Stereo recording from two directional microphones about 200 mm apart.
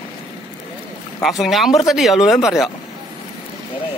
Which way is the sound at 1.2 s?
Centre (ahead or behind).